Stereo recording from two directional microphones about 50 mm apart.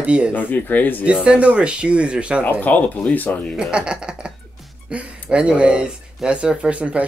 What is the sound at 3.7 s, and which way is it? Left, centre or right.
Speech, centre.